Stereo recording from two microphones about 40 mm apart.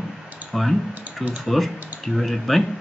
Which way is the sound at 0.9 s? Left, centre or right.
Right.